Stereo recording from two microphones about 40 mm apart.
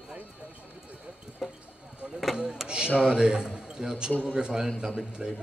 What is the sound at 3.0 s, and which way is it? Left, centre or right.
A man's voice, centre.